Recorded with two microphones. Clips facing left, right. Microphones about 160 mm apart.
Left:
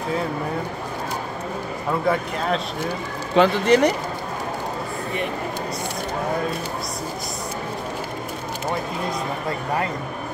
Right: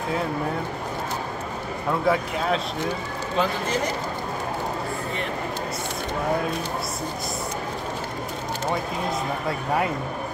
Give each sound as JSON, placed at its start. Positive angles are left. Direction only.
{"t": 1.9, "sound": "speech", "side_deg": 0}
{"t": 3.3, "sound": "speech", "side_deg": 75}